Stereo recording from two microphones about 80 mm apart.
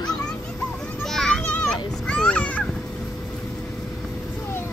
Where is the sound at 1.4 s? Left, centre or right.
Centre.